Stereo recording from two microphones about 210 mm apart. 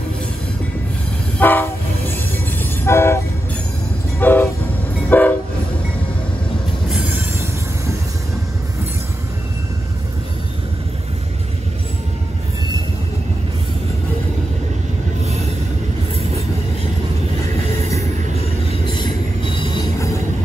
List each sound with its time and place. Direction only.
1.4 s train: 10° left (ahead or behind)
4.2 s train: 10° left (ahead or behind)
18.7 s train: 20° left (ahead or behind)